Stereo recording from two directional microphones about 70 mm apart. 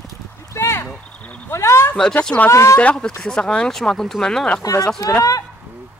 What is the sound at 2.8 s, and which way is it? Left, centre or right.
Speech, centre.